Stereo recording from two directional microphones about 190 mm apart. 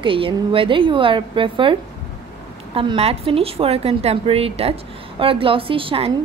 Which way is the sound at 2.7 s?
30° right (ahead or behind).